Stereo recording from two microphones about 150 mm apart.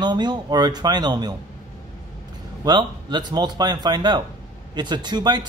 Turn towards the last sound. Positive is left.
turn(degrees=-30)  # may be behind; listen again after turning